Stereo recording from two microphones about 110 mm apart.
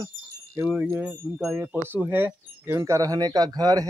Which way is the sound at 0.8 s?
15° right (ahead or behind).